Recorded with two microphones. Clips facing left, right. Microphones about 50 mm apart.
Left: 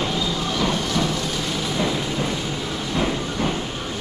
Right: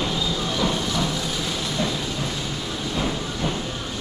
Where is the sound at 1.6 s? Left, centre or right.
Centre.